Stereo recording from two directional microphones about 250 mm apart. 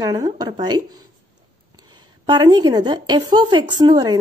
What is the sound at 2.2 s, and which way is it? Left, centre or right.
A woman's voice, centre.